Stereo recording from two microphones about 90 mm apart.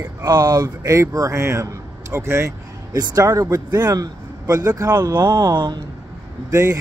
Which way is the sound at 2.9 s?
45° right (ahead or behind).